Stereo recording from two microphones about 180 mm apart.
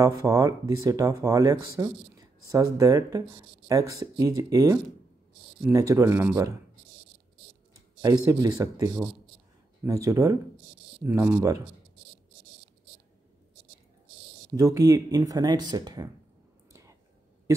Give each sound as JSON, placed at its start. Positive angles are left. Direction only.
{"t": 0.2, "sound": "speech", "side_deg": -20}
{"t": 8.3, "sound": "speech", "side_deg": -15}
{"t": 14.6, "sound": "speech", "side_deg": -20}